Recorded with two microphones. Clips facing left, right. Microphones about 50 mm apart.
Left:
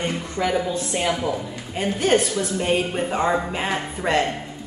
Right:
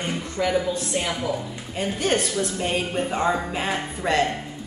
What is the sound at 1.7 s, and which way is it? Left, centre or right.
A woman's voice, centre.